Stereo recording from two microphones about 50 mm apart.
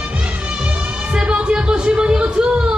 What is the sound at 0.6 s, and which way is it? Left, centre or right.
Music, right.